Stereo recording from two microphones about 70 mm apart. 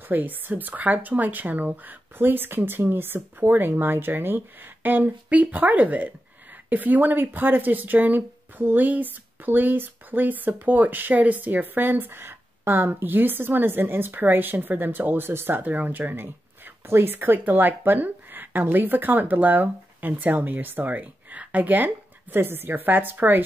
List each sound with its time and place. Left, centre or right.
0.1 s speech: right